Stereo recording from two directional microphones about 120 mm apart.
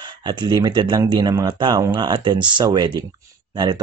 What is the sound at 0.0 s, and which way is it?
Speech, 40° right (ahead or behind).